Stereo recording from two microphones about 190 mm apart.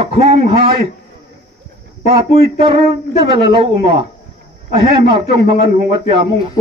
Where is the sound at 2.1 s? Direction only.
30° right (ahead or behind).